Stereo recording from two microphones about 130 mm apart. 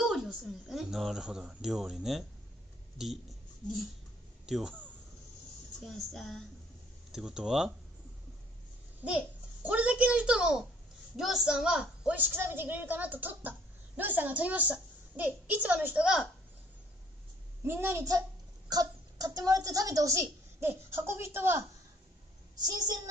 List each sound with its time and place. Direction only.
0.0 s speech: 5° right (ahead or behind)
4.5 s speech: centre (ahead or behind)
5.9 s speech: centre (ahead or behind)
9.0 s a child's voice: 10° right (ahead or behind)
17.6 s speech: 20° right (ahead or behind)